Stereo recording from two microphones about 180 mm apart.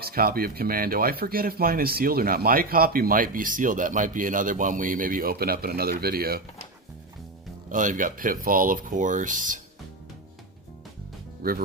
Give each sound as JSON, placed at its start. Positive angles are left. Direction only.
{"t": 0.0, "sound": "speech", "side_deg": -55}
{"t": 7.7, "sound": "speech", "side_deg": -45}